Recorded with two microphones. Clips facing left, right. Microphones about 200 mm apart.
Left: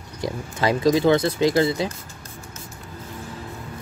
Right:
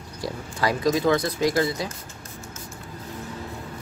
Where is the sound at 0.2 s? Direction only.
25° left (ahead or behind).